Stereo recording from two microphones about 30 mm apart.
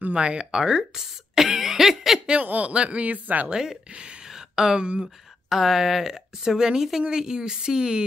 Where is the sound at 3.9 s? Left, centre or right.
Right.